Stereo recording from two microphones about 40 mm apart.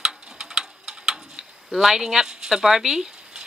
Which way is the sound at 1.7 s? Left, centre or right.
Centre.